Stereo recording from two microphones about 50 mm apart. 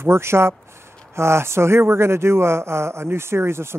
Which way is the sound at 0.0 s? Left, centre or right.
Right.